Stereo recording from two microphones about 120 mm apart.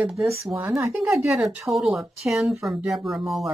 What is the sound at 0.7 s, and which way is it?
Speech, 25° right (ahead or behind).